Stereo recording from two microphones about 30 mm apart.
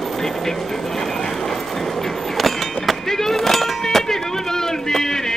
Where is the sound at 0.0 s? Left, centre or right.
Centre.